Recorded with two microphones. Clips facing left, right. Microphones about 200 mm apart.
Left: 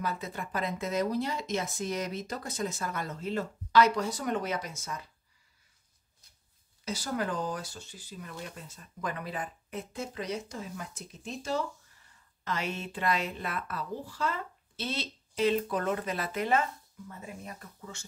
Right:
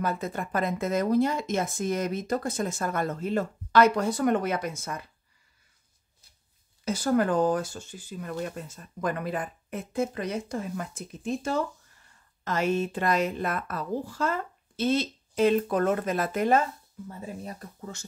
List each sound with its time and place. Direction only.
0.0 s speech: 50° right (ahead or behind)
6.8 s speech: 50° right (ahead or behind)
17.1 s speech: 35° right (ahead or behind)